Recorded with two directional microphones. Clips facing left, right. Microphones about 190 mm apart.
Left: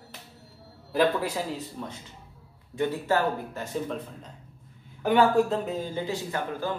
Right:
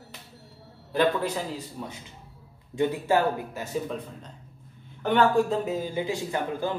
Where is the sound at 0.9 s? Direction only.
5° left (ahead or behind).